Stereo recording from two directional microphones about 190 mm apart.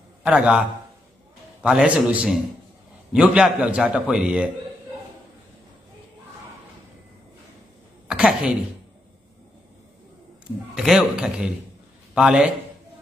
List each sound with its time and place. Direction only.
0.2 s a man's voice: 5° right (ahead or behind)
8.1 s speech: 5° right (ahead or behind)
10.7 s a man's voice: centre (ahead or behind)